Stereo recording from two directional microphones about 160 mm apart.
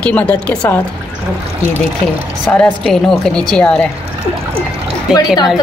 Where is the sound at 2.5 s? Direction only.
5° left (ahead or behind).